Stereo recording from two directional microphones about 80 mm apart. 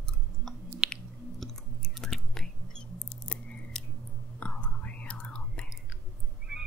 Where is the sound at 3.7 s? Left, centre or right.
Centre.